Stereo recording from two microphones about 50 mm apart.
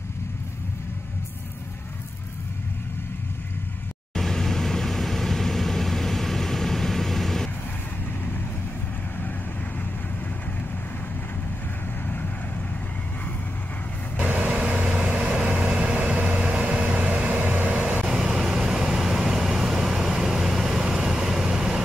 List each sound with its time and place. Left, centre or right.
4.1 s vehicle: centre
14.1 s vehicle: right
17.3 s vehicle: right
17.8 s vehicle: centre
18.1 s vehicle: centre